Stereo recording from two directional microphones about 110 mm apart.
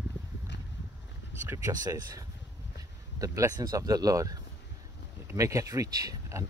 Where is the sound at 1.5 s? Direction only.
30° right (ahead or behind).